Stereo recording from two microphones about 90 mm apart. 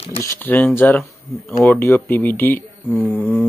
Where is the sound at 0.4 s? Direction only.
20° left (ahead or behind).